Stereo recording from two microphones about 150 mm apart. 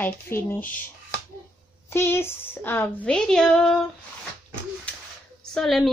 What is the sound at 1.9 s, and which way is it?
Speech, 15° left (ahead or behind).